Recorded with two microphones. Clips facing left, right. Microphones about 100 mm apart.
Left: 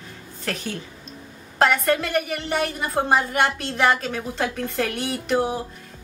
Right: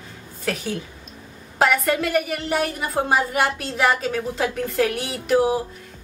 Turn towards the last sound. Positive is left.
turn(degrees=-5)  # may be behind; listen again after turning